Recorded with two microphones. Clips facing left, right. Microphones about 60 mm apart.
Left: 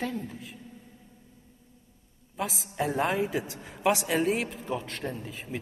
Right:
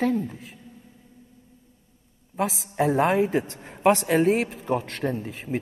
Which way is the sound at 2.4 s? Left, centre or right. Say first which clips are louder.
Right 6 dB; right.